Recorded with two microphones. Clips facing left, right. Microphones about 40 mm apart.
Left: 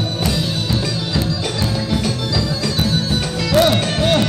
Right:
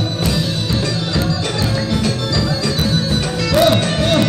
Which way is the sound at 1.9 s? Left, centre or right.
Centre.